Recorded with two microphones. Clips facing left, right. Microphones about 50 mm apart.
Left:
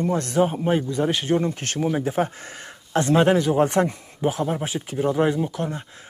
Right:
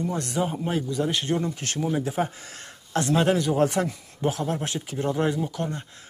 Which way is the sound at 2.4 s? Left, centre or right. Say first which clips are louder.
Left 4 dB; left.